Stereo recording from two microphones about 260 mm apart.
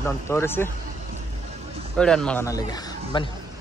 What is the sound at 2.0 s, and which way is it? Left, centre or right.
A man's voice, centre.